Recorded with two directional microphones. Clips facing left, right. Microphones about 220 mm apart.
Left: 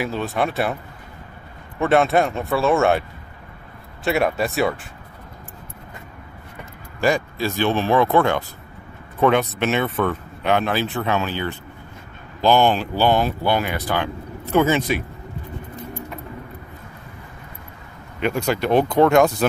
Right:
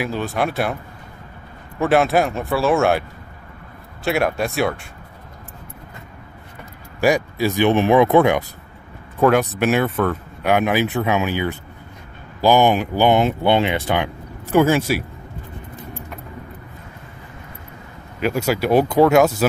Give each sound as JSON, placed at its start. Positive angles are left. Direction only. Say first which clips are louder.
{"t": 0.0, "sound": "speech", "louder": "right 1 dB", "side_deg": 0}
{"t": 1.8, "sound": "speech", "louder": "right 1 dB", "side_deg": 0}
{"t": 4.0, "sound": "speech", "louder": "even", "side_deg": 0}
{"t": 7.0, "sound": "speech", "louder": "right 3 dB", "side_deg": -15}
{"t": 18.2, "sound": "speech", "louder": "right 2 dB", "side_deg": -5}